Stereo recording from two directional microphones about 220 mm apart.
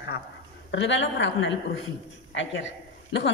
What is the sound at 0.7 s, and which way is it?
A man's voice, 55° left (ahead or behind).